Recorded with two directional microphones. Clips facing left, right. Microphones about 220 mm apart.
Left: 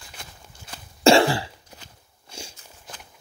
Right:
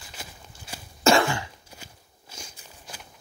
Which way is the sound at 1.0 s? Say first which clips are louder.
Left 4 dB; 30° left (ahead or behind).